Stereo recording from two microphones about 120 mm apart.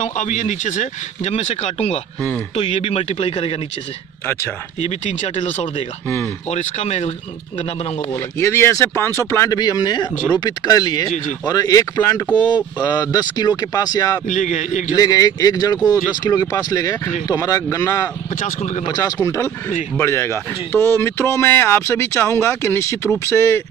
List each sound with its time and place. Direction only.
0.0 s speech: 90° left; by 3.5 s 55° left (ahead or behind)
4.7 s speech: 65° left (ahead or behind)
6.0 s speech: 20° left (ahead or behind)
6.5 s speech: 70° left (ahead or behind)
8.1 s speech: 20° left (ahead or behind)
9.6 s speech: 35° left (ahead or behind)
12.4 s speech: 40° left (ahead or behind)
14.2 s speech: 90° left
15.0 s speech: 30° left (ahead or behind)
18.3 s speech: 85° left
18.9 s speech: 35° left (ahead or behind)